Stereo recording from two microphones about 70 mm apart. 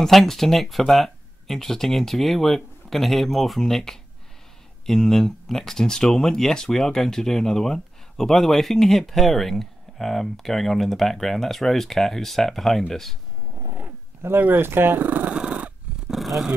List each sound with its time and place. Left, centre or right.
0.0 s speech: centre
13.7 s dog: right
14.4 s speech: right
16.1 s a sound: centre